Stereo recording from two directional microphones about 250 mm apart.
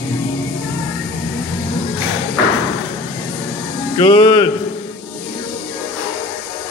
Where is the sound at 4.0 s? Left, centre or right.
Centre.